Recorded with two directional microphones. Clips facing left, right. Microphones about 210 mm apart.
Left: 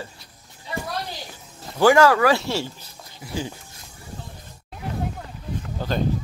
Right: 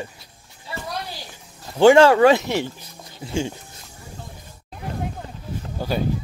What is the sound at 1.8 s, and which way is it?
Speech, 25° right (ahead or behind).